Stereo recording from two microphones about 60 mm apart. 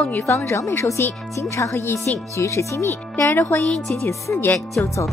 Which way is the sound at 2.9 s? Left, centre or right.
Left.